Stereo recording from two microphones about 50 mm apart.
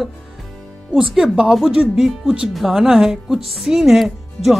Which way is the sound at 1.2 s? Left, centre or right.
Centre.